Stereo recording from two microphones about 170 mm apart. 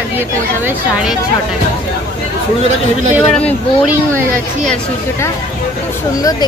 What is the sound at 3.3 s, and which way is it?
Speech, 10° left (ahead or behind).